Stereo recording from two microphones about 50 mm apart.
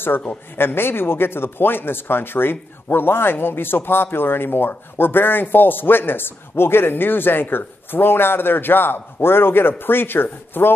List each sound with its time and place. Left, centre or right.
0.6 s speech: left